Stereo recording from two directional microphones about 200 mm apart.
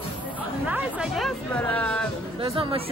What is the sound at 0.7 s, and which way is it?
Speech, 5° right (ahead or behind).